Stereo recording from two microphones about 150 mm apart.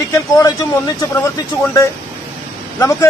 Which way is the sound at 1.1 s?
20° left (ahead or behind).